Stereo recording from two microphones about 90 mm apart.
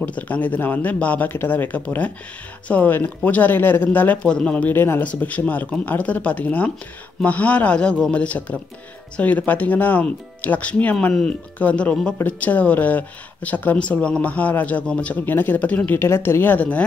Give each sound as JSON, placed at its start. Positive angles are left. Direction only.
{"t": 0.0, "sound": "speech", "side_deg": 20}
{"t": 12.2, "sound": "speech", "side_deg": 20}
{"t": 16.0, "sound": "speech", "side_deg": 30}